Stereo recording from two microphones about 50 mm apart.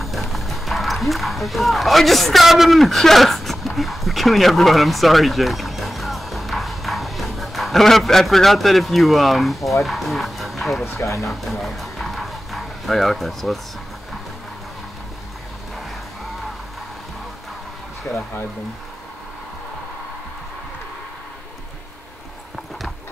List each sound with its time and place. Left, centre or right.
0.0 s speech: centre
11.0 s speech: left
11.2 s music: centre